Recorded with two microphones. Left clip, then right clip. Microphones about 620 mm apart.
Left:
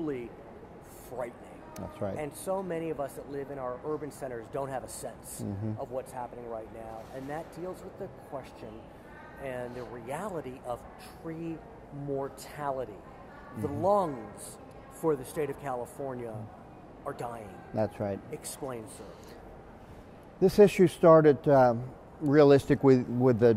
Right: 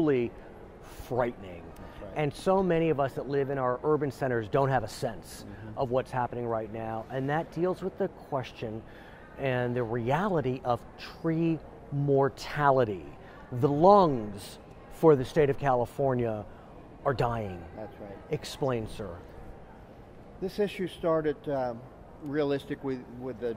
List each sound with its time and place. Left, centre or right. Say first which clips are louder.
0.0 s a man's voice: right 9 dB; right
20.3 s speech: left 10 dB; left